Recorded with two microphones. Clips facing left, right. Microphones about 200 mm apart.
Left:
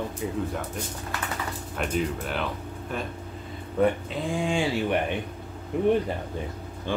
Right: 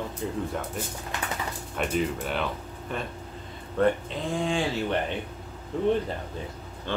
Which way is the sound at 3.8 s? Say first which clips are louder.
Even; 10° left (ahead or behind).